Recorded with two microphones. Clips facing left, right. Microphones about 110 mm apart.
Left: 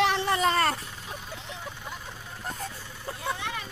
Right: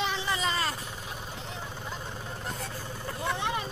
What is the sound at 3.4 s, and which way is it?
Vehicle, 20° right (ahead or behind).